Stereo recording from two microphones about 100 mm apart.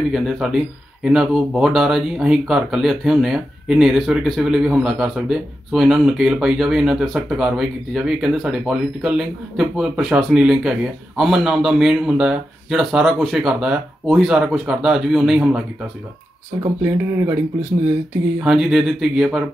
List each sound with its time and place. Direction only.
0.1 s speech: 5° right (ahead or behind)
16.8 s speech: 25° right (ahead or behind)
18.4 s speech: 5° right (ahead or behind)